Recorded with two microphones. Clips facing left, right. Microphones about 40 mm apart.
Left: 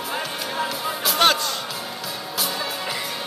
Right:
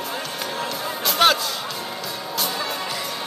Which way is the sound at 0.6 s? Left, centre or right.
Centre.